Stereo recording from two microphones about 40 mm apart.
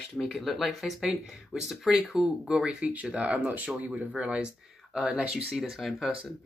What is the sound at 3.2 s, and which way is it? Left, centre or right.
Speech, right.